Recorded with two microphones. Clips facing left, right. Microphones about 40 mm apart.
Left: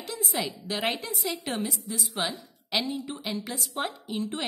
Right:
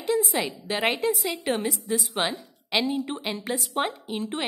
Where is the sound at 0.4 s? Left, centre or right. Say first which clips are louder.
Right 4 dB; right.